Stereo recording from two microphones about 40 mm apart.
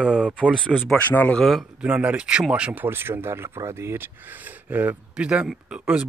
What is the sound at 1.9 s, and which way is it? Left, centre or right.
Speech, right.